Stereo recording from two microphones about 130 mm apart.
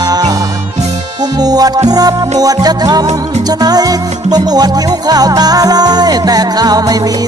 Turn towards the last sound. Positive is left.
turn(degrees=-30)  # may be behind; listen again after turning